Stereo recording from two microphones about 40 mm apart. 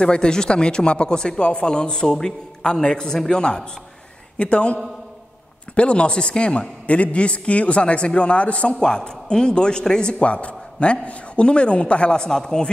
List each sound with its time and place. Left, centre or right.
0.0 s a man's voice: left
5.8 s speech: left
10.1 s speech: left; by 12.6 s centre